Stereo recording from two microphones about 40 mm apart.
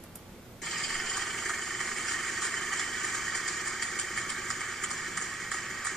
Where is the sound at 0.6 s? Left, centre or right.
Centre.